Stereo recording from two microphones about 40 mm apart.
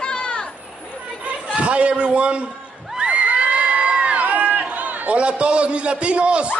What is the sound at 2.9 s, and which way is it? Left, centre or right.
Crowd, right.